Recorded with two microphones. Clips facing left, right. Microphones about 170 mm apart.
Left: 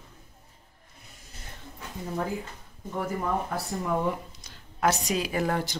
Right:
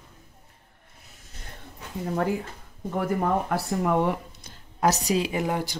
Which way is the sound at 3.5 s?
65° right (ahead or behind).